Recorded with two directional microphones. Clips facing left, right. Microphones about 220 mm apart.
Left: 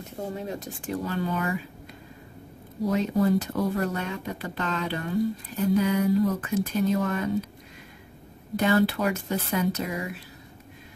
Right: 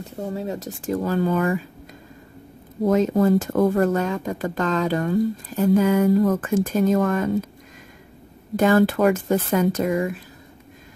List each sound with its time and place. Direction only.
0.3 s speech: 35° right (ahead or behind)
2.8 s speech: 50° right (ahead or behind)
8.5 s speech: 50° right (ahead or behind)